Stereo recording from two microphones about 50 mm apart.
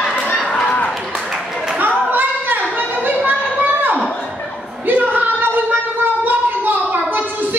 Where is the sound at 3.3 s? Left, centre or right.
Right.